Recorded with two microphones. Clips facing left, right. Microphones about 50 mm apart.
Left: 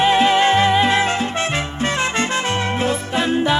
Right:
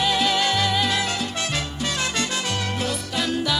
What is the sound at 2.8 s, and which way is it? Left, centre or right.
Music, left.